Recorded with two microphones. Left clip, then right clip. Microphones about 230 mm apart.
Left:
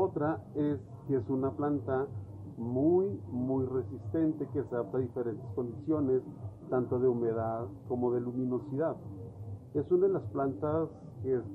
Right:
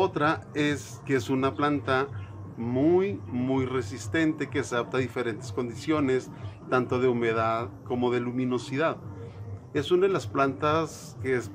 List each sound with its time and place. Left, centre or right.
0.0 s speech: right